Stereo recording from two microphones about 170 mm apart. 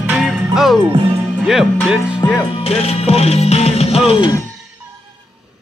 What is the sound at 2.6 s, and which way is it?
Music, 35° left (ahead or behind).